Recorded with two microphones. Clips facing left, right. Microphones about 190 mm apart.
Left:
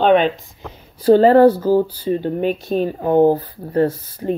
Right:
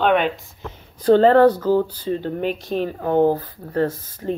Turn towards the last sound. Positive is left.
turn(degrees=25)  # may be behind; listen again after turning